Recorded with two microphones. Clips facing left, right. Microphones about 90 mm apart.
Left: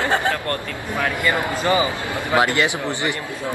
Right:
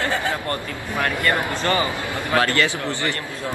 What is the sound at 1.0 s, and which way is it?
A man's voice, 10° left (ahead or behind).